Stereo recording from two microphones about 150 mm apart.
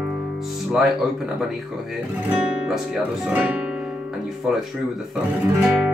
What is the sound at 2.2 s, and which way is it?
Speech, 10° right (ahead or behind).